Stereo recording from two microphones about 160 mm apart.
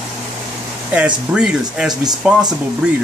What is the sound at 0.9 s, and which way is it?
Speech, 5° right (ahead or behind).